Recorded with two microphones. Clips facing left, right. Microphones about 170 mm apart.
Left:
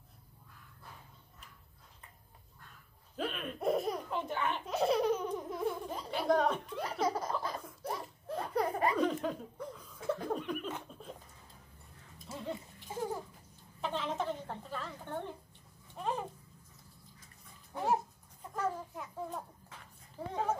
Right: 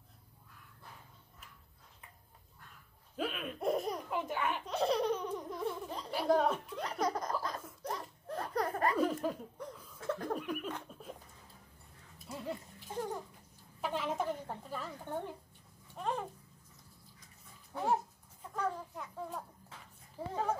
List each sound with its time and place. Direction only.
3.2 s laughter: 5° right (ahead or behind)
4.1 s a child's voice: 10° right (ahead or behind)
4.6 s laughter: 5° left (ahead or behind)
6.8 s laughter: 5° left (ahead or behind)
8.9 s chuckle: 5° right (ahead or behind)
9.9 s laughter: 10° left (ahead or behind)
10.3 s a sound: 5° right (ahead or behind)
10.9 s hiccup: 5° right (ahead or behind)
12.2 s a sound: 5° right (ahead or behind)
13.7 s a sound: 10° right (ahead or behind)
15.9 s babbling: centre (ahead or behind)
18.5 s a sound: 5° left (ahead or behind)